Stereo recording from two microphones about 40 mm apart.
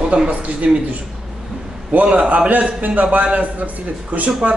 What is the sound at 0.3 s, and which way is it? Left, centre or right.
Speech, right.